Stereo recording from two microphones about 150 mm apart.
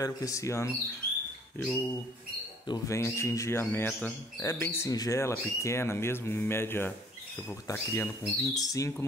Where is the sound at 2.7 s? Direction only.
20° left (ahead or behind).